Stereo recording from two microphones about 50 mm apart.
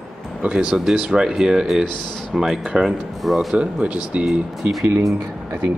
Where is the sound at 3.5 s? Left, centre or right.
Right.